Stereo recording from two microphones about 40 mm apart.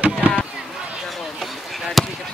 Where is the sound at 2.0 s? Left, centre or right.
Centre.